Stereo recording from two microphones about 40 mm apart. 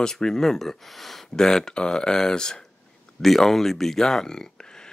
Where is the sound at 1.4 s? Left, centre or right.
Centre.